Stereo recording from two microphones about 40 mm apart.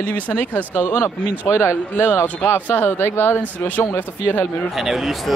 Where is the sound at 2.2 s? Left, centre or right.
Left.